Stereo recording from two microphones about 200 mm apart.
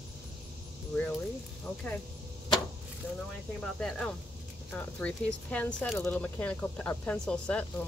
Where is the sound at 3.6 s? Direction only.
5° left (ahead or behind).